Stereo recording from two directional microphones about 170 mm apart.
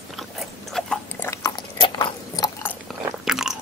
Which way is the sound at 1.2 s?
15° left (ahead or behind).